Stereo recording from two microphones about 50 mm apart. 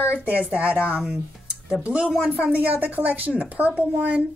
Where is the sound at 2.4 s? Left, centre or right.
Right.